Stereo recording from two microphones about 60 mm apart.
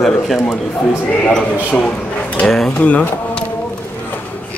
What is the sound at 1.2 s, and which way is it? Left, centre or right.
A man's voice, left.